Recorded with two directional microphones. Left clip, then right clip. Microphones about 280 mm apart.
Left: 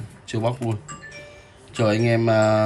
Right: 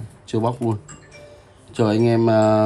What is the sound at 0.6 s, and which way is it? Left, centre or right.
Speech, centre.